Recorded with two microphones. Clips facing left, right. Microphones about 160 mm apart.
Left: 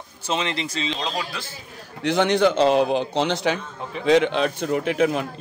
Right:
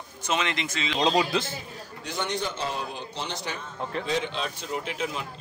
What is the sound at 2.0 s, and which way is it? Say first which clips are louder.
A man's voice: left 12 dB; 80° left.